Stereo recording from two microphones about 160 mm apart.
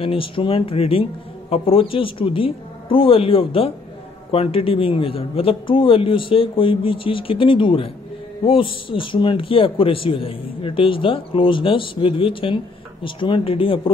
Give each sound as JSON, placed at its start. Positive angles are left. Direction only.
{"t": 0.0, "sound": "a man's voice", "side_deg": 35}